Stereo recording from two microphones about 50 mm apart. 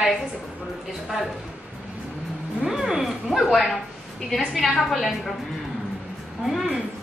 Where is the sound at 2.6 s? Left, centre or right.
Centre.